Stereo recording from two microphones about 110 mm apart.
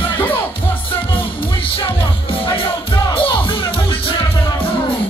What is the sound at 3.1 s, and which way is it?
Music, 55° left (ahead or behind).